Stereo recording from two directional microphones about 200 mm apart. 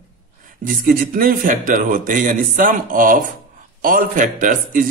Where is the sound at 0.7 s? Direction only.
45° right (ahead or behind).